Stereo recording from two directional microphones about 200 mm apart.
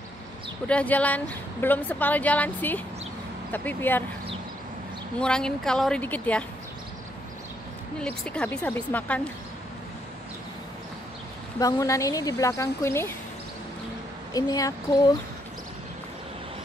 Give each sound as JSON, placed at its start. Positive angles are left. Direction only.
{"t": 0.7, "sound": "a woman's voice", "side_deg": 5}
{"t": 5.2, "sound": "speech", "side_deg": 5}
{"t": 8.0, "sound": "a woman's voice", "side_deg": 5}
{"t": 11.6, "sound": "a woman's voice", "side_deg": 15}
{"t": 14.3, "sound": "speech", "side_deg": 20}